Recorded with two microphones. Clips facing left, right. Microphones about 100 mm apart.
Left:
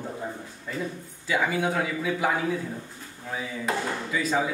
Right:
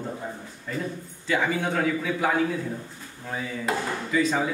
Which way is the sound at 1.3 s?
5° left (ahead or behind).